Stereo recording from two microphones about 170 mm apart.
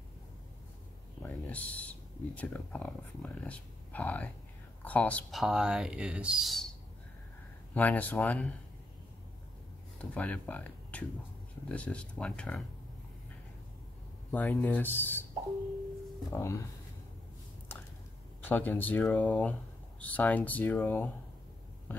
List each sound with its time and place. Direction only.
1.2 s speech: 10° left (ahead or behind)
7.7 s speech: 10° left (ahead or behind)
9.9 s speech: 10° left (ahead or behind)
14.3 s speech: 15° left (ahead or behind)
16.3 s speech: 15° left (ahead or behind)
18.4 s speech: 10° left (ahead or behind)